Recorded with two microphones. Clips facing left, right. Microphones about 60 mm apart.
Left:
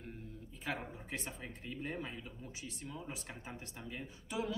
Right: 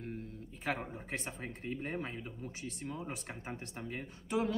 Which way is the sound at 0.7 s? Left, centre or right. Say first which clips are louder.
Right 4 dB; right.